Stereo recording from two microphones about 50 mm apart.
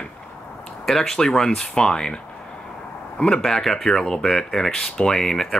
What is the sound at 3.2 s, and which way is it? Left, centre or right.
Speech, centre.